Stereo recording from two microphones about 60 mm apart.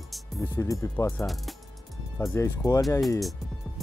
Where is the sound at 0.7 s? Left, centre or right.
Left.